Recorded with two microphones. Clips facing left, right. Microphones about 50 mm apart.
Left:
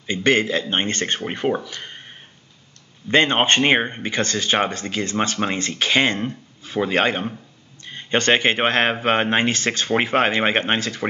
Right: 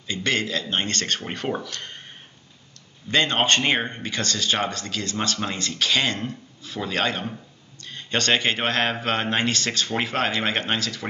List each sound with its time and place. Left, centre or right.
0.0 s speech: left; by 2.0 s centre
3.1 s a man's voice: left